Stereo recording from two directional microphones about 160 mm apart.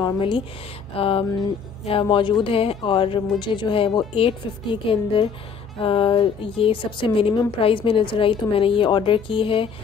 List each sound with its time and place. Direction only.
0.0 s a woman's voice: 30° left (ahead or behind)